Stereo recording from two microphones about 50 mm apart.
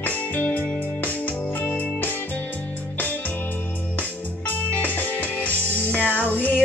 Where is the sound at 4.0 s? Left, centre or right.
Left.